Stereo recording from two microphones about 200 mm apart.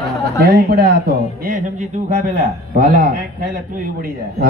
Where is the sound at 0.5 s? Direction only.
50° right (ahead or behind).